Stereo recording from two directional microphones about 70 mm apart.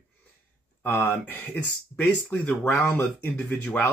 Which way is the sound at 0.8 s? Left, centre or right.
Left.